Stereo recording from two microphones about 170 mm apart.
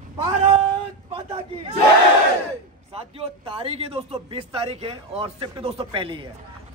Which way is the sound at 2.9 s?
35° right (ahead or behind).